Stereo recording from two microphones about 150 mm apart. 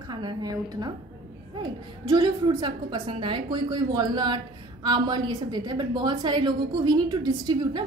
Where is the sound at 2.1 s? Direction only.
30° right (ahead or behind).